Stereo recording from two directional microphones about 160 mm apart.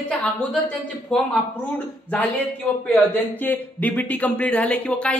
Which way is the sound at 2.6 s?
5° left (ahead or behind).